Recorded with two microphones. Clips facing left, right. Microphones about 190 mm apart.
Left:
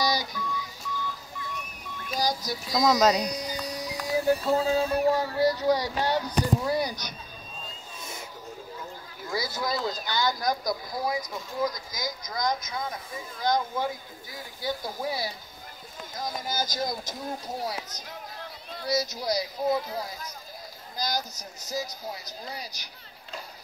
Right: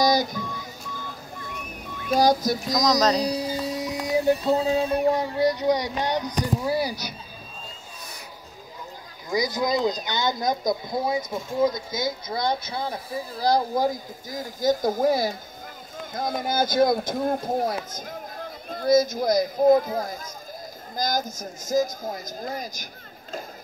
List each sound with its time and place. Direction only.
0.0 s a sound: 45° right (ahead or behind)
2.0 s speech: 55° right (ahead or behind)
2.7 s speech: 10° left (ahead or behind)
3.2 s a sound: 30° right (ahead or behind)
6.7 s speech: 5° right (ahead or behind)
9.3 s speech: 15° right (ahead or behind); by 22.8 s 50° right (ahead or behind)